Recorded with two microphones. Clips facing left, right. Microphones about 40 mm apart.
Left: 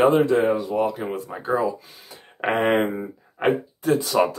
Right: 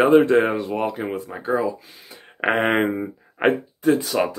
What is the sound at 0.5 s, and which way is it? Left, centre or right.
Speech, right.